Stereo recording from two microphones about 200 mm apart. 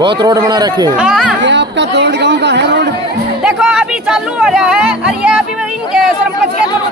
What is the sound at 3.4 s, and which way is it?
Speech, 5° right (ahead or behind).